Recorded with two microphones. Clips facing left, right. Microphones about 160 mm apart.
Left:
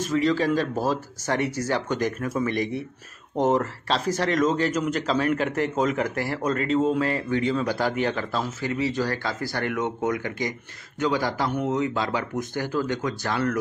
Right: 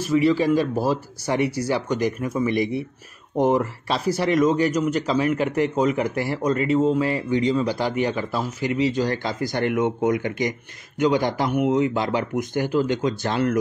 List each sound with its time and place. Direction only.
0.0 s speech: 10° right (ahead or behind)